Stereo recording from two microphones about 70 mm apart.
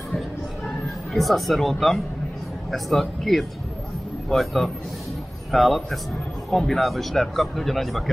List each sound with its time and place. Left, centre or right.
1.1 s speech: centre